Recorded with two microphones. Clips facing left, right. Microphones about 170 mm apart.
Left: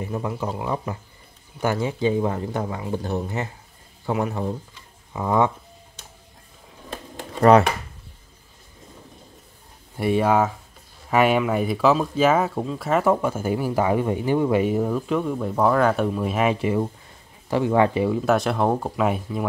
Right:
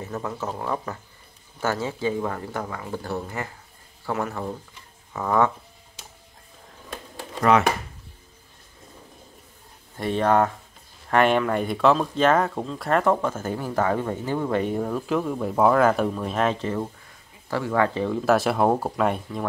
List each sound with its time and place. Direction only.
0.0 s speech: 15° left (ahead or behind)
9.9 s speech: 10° left (ahead or behind)
18.2 s speech: centre (ahead or behind)